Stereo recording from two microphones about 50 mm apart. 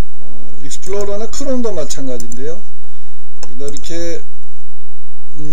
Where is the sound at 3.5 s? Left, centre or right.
Centre.